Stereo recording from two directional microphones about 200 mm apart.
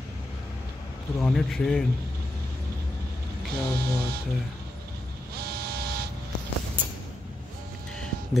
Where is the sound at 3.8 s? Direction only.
50° right (ahead or behind).